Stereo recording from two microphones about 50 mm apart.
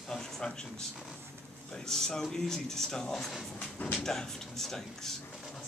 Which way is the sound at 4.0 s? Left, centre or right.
Centre.